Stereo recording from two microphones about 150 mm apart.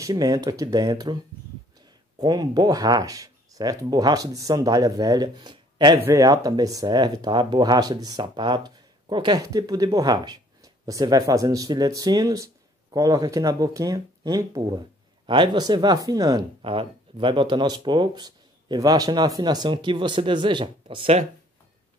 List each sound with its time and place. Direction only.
0.0 s speech: 25° right (ahead or behind)
2.1 s speech: 25° right (ahead or behind)